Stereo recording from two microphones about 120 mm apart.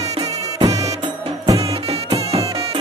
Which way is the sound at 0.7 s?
30° right (ahead or behind).